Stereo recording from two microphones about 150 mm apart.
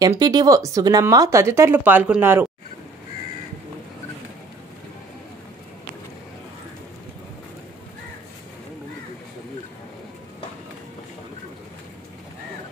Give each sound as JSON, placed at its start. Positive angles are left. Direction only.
{"t": 0.0, "sound": "speech", "side_deg": -25}